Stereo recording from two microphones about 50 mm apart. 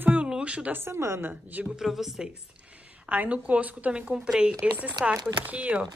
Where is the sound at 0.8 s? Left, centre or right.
Right.